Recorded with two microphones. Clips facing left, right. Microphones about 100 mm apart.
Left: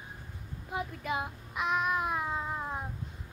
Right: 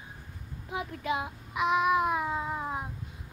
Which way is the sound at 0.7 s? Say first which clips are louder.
Right 2 dB; centre (ahead or behind).